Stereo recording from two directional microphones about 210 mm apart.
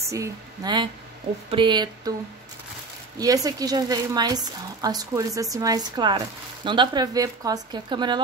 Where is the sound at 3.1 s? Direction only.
15° right (ahead or behind).